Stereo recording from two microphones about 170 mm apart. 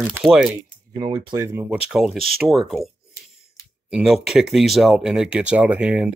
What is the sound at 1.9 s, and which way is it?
Speech, centre (ahead or behind).